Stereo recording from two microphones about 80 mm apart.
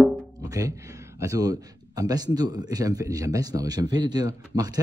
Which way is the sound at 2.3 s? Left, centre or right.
Right.